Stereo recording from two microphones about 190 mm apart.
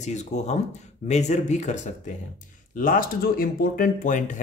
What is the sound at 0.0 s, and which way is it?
Speech, 40° left (ahead or behind).